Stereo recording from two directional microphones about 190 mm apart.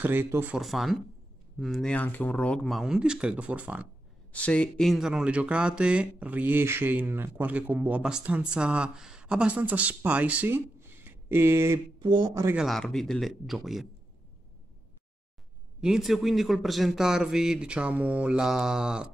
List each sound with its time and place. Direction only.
0.0 s a man's voice: 10° right (ahead or behind)
4.3 s speech: 5° left (ahead or behind); by 11.8 s 15° right (ahead or behind)
12.0 s speech: 25° right (ahead or behind)
12.4 s a man's voice: centre (ahead or behind)
15.8 s a man's voice: centre (ahead or behind)